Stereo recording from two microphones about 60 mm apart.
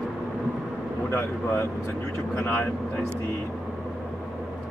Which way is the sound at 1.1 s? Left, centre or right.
Left.